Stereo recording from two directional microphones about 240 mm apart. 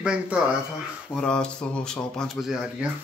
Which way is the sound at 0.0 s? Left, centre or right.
Centre.